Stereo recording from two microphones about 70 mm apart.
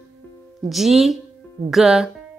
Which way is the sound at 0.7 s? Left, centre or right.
Centre.